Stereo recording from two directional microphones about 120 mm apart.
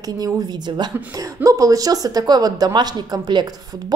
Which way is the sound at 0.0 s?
30° right (ahead or behind).